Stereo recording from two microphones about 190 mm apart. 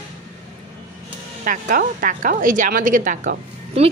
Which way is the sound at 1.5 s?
45° right (ahead or behind).